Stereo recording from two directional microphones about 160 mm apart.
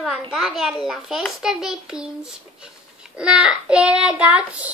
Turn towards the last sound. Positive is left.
turn(degrees=-10)  # may be behind; listen again after turning